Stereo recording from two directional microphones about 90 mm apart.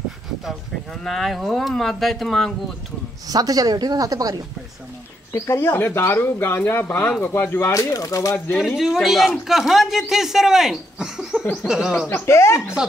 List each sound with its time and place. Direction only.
1.0 s speech: centre (ahead or behind)
3.3 s speech: 45° right (ahead or behind)
5.3 s speech: 30° left (ahead or behind)
7.7 s speech: 40° left (ahead or behind)
8.5 s speech: centre (ahead or behind)
11.5 s a sound: 5° right (ahead or behind)
12.1 s speech: 30° left (ahead or behind)